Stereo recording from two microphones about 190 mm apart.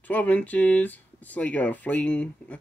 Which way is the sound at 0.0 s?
10° left (ahead or behind).